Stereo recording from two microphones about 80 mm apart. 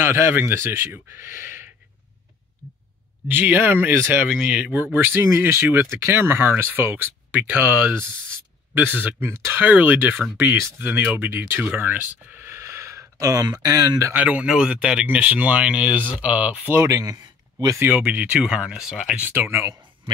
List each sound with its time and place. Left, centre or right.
0.0 s speech: right
3.3 s speech: right
4.2 s speech: centre
4.9 s speech: right
14.1 s speech: centre
16.7 s speech: right
17.0 s a sound: right
17.8 s speech: centre
19.1 s speech: right